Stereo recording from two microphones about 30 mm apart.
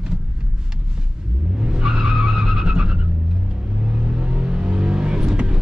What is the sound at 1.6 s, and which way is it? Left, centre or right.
Vehicle, right.